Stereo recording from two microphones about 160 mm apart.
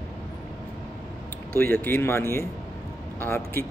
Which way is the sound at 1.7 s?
15° left (ahead or behind).